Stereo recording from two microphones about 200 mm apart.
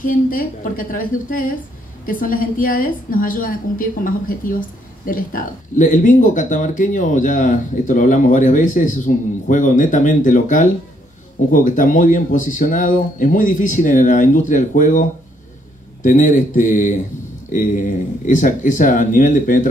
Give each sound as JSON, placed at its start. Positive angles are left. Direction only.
{"t": 0.0, "sound": "a woman's voice", "side_deg": 45}